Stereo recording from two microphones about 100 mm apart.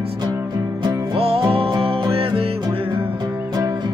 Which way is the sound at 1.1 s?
70° right (ahead or behind).